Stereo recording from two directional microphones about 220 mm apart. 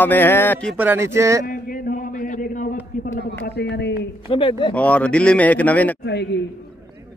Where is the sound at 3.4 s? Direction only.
50° left (ahead or behind).